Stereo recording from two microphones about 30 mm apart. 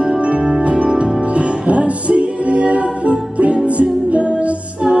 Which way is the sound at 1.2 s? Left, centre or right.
Right.